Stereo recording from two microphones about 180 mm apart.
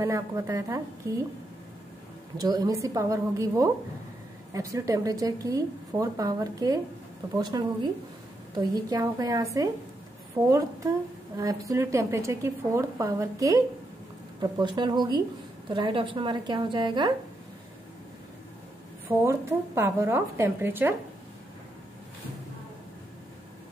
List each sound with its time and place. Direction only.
0.0 s speech: 15° right (ahead or behind)
2.3 s a woman's voice: 20° right (ahead or behind)
19.0 s speech: 15° right (ahead or behind)